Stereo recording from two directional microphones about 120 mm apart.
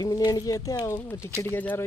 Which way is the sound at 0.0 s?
30° left (ahead or behind).